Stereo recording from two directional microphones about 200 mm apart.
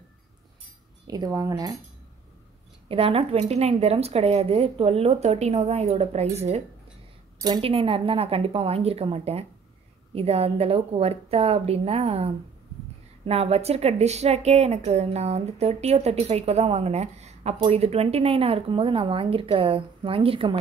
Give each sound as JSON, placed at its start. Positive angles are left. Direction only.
{"t": 1.0, "sound": "speech", "side_deg": -20}
{"t": 2.9, "sound": "a woman's voice", "side_deg": -30}
{"t": 7.3, "sound": "a woman's voice", "side_deg": -20}